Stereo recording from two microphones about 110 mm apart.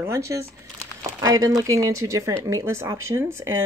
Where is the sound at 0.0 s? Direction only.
30° right (ahead or behind).